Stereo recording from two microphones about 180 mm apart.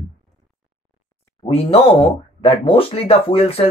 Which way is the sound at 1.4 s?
35° left (ahead or behind).